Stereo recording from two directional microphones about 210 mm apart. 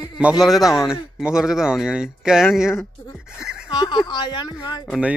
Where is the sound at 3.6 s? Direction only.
20° left (ahead or behind).